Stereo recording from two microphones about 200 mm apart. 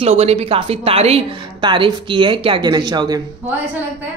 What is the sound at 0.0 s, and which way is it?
A woman's voice, 30° right (ahead or behind).